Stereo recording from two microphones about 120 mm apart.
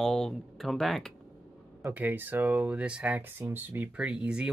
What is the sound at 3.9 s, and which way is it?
Speech, 10° right (ahead or behind).